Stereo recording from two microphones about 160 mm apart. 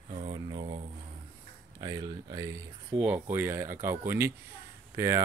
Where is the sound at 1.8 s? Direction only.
25° right (ahead or behind).